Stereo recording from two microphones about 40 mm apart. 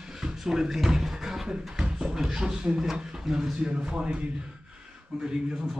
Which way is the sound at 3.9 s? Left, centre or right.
Right.